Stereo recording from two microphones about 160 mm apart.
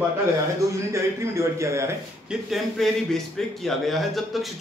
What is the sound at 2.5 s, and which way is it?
A man's voice, centre (ahead or behind).